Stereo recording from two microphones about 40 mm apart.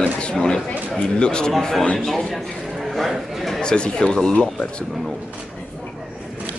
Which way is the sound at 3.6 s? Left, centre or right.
Centre.